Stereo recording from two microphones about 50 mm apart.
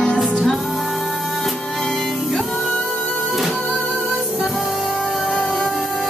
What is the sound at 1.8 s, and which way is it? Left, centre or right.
Music, centre.